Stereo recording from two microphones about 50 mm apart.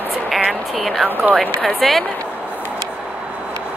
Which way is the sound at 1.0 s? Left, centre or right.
Right.